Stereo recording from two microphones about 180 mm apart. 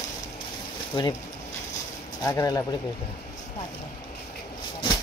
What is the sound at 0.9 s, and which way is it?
Speech, 20° left (ahead or behind).